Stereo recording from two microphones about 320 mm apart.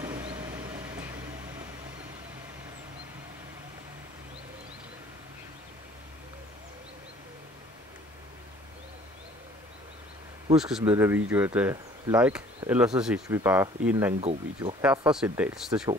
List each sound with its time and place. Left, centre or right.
0.0 s vehicle: centre
10.5 s speech: centre
14.2 s speech: centre
14.8 s speech: centre